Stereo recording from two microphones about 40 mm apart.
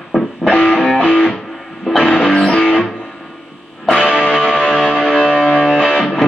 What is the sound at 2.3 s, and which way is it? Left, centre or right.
Music, left.